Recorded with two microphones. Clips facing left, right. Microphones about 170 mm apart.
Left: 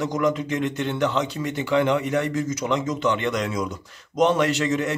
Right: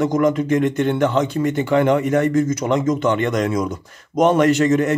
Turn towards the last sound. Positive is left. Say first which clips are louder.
# right 7 dB
turn(degrees=-50)  # may be behind; listen again after turning